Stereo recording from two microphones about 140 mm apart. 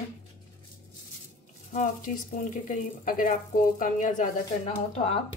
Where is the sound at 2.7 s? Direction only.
75° left (ahead or behind).